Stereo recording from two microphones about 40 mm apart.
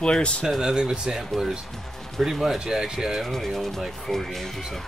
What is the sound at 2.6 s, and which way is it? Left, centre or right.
Speech, centre.